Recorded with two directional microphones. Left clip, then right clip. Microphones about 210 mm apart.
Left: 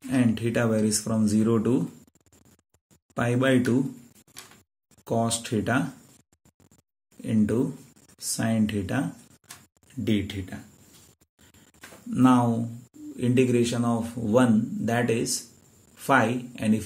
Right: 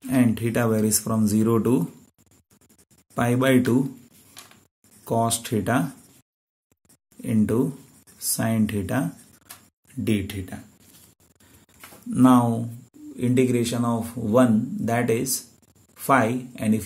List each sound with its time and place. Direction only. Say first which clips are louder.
0.1 s speech: right 2 dB; 30° right (ahead or behind)
3.2 s speech: right 3 dB; 30° right (ahead or behind)
5.0 s speech: right 3 dB; 30° right (ahead or behind)
7.2 s speech: right 2 dB; 30° right (ahead or behind)
10.0 s speech: right 1 dB; 30° right (ahead or behind)
12.1 s speech: right 3 dB; 30° right (ahead or behind)